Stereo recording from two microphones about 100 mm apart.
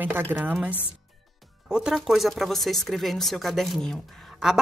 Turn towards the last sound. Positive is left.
turn(degrees=-5)  # may be behind; listen again after turning